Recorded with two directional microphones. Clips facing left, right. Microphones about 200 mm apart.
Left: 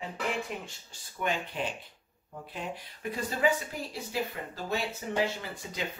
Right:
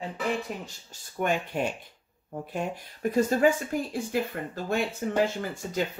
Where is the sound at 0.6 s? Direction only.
45° right (ahead or behind).